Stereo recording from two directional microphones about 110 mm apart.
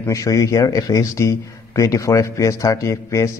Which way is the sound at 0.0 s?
30° left (ahead or behind).